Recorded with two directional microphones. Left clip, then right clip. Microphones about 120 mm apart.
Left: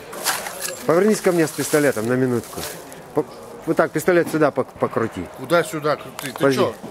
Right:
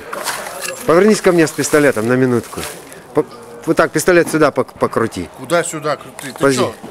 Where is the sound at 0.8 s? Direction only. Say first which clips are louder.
Right 6 dB; 40° right (ahead or behind).